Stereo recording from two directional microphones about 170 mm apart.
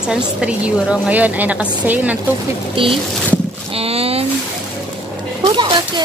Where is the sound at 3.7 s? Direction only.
35° right (ahead or behind).